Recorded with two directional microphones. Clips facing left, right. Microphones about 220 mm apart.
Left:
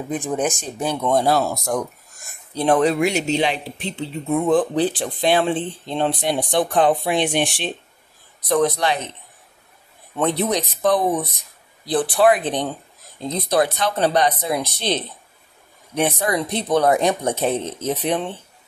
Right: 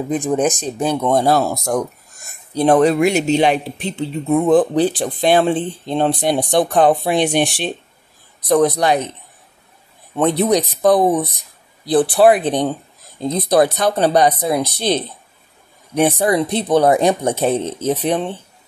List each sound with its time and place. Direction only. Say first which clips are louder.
0.1 s speech: right 5 dB; 90° right
0.7 s speech: right 2 dB; 50° right (ahead or behind)
10.1 s speech: right 5 dB; 35° right (ahead or behind)
16.0 s speech: right 6 dB; 30° right (ahead or behind)